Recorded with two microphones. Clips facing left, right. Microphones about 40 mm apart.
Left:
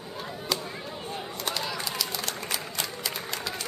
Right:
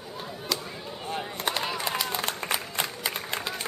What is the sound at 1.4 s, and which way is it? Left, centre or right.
Run, right.